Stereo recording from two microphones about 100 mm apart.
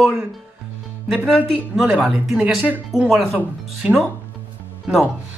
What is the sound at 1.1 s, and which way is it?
Speech, centre (ahead or behind).